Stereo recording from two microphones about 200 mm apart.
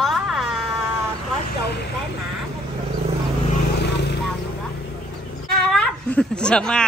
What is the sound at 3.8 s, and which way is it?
Vehicle, 60° left (ahead or behind).